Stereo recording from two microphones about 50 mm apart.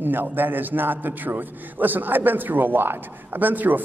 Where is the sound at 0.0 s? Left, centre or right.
Right.